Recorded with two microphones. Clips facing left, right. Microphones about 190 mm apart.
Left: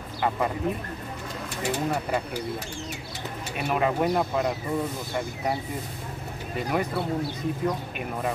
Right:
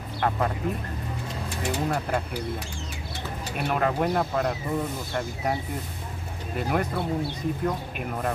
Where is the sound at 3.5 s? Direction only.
Centre (ahead or behind).